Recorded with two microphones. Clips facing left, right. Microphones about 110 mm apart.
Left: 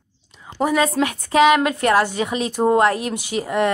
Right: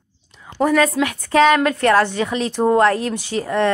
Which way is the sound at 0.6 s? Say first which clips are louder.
Right 3 dB; 15° left (ahead or behind).